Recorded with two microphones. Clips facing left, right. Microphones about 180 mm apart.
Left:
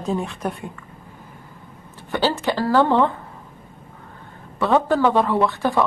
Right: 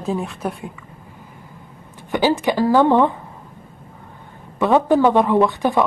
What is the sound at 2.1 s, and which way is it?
Speech, 15° right (ahead or behind).